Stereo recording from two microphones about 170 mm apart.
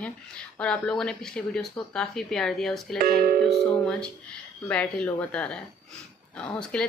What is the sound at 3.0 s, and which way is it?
Speech, 60° right (ahead or behind).